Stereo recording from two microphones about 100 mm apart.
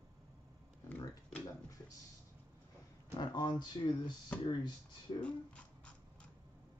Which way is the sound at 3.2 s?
50° left (ahead or behind).